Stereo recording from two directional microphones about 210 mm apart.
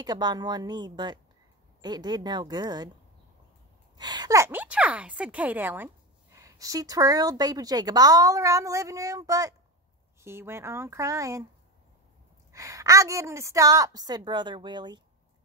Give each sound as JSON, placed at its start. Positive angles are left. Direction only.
{"t": 0.0, "sound": "a woman's voice", "side_deg": -20}
{"t": 4.0, "sound": "a woman's voice", "side_deg": -20}
{"t": 12.5, "sound": "a woman's voice", "side_deg": -15}